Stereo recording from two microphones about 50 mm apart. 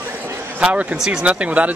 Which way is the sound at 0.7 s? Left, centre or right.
Right.